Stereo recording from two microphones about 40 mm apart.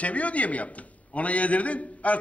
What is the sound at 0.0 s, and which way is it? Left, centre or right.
A man's voice, left.